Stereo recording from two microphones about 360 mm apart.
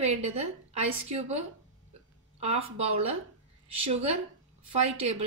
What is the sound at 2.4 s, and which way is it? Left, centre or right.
Speech, centre.